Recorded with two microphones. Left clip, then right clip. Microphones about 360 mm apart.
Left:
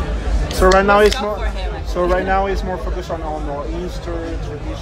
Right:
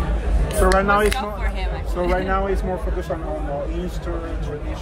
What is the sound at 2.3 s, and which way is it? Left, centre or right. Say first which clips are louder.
Speech: left 5 dB; centre.